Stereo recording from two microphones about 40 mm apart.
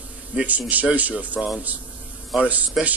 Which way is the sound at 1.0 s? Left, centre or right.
Right.